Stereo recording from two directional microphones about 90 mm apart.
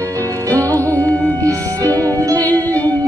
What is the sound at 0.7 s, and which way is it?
Music, 20° left (ahead or behind).